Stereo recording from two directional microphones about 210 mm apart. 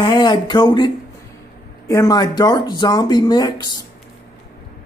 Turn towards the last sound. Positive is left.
turn(degrees=20)  # may be behind; listen again after turning